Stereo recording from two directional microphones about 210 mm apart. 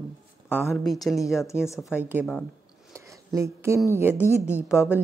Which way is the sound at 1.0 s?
5° left (ahead or behind).